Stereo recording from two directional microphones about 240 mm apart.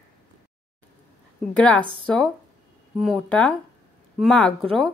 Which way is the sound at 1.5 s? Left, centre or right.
Centre.